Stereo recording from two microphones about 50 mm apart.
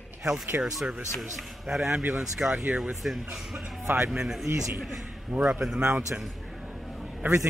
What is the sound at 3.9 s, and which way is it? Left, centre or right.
Speech, right.